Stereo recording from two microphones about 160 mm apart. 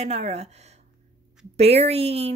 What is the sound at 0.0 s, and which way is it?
Speech, 40° right (ahead or behind).